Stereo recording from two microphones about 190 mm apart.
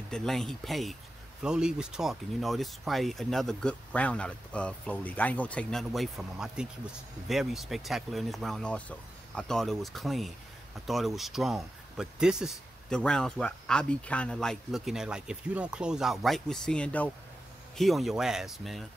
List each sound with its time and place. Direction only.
0.1 s speech: 5° left (ahead or behind)